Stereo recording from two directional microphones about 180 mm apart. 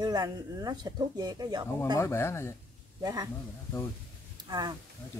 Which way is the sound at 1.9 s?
15° left (ahead or behind).